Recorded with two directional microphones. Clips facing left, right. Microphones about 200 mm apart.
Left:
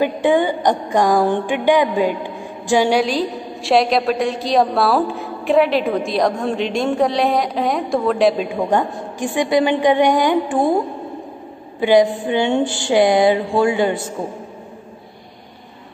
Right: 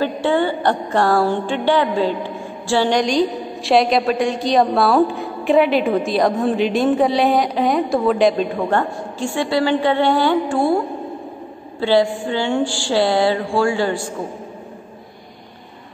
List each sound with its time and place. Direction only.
0.0 s music: 15° left (ahead or behind)
8.5 s a woman's voice: 15° left (ahead or behind)
11.8 s speech: 15° left (ahead or behind)